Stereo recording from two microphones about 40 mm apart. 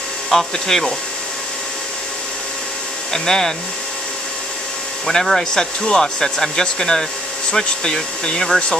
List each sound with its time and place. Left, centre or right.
0.3 s speech: centre
3.1 s speech: centre
5.0 s speech: centre